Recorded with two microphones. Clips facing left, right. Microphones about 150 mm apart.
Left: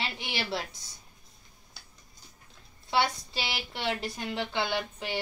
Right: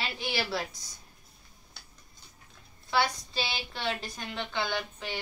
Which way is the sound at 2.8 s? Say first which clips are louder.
Left 1 dB; 25° left (ahead or behind).